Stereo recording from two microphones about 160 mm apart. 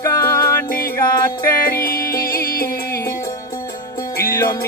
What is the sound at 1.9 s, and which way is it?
Music, 65° left (ahead or behind).